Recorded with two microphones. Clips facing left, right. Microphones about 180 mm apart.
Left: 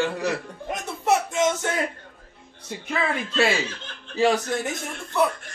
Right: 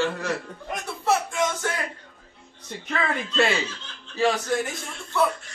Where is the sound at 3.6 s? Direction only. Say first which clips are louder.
Left 2 dB; 55° left (ahead or behind).